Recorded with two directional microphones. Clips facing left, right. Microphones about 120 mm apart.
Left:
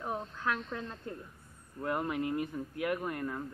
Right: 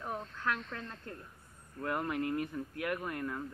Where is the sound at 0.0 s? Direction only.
15° left (ahead or behind).